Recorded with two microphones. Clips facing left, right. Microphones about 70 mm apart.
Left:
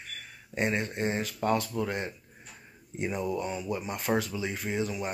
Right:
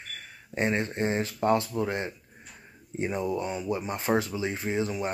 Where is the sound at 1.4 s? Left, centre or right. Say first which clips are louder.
Right 3 dB; centre.